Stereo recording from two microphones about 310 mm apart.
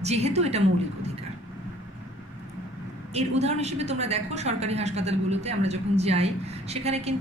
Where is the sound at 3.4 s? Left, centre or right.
Right.